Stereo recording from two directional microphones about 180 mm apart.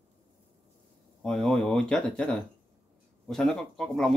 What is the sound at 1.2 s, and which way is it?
Speech, 5° left (ahead or behind).